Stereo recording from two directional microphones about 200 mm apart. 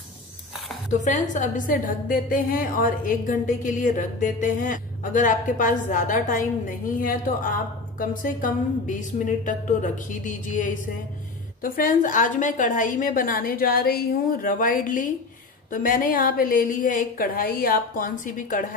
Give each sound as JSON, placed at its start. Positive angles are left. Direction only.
{"t": 0.9, "sound": "a woman's voice", "side_deg": 40}